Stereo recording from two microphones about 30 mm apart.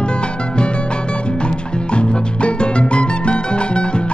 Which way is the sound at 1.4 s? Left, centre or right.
Left.